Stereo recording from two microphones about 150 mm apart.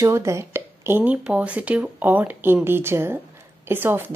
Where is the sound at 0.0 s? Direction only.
20° right (ahead or behind).